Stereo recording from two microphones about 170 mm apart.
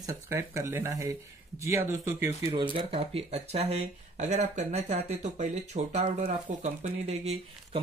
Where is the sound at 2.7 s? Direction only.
35° right (ahead or behind).